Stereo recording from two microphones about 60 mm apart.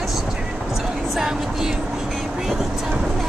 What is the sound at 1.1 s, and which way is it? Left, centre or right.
Vehicle, centre.